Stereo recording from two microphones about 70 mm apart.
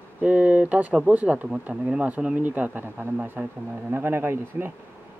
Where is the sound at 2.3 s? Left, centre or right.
Right.